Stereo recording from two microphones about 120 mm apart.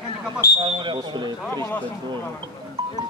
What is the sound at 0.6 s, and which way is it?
A man's voice, 40° right (ahead or behind).